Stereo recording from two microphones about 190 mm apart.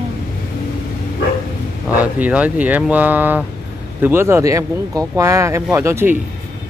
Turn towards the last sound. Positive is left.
turn(degrees=-15)  # may be behind; listen again after turning